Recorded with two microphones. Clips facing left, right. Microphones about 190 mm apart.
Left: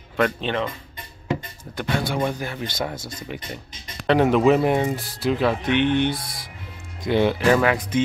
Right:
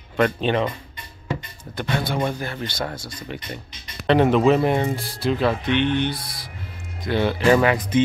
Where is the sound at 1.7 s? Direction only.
Centre (ahead or behind).